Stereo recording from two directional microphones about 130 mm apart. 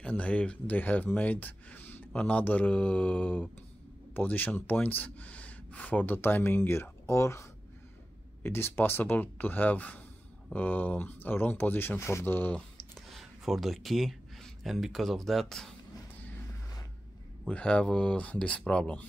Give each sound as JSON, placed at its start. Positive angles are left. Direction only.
{"t": 0.0, "sound": "speech", "side_deg": 10}
{"t": 12.9, "sound": "speech", "side_deg": 0}
{"t": 17.5, "sound": "speech", "side_deg": 10}